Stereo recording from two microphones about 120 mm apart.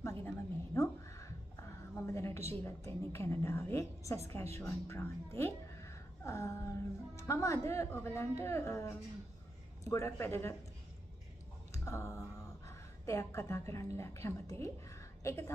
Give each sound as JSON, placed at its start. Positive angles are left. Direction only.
{"t": 0.0, "sound": "a woman's voice", "side_deg": 20}
{"t": 2.0, "sound": "a sound", "side_deg": 25}
{"t": 2.5, "sound": "a woman's voice", "side_deg": 20}
{"t": 11.7, "sound": "speech", "side_deg": 25}